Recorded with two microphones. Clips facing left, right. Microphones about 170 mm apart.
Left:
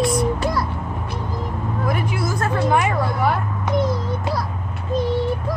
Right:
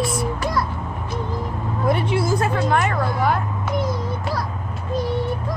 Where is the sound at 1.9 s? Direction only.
25° right (ahead or behind).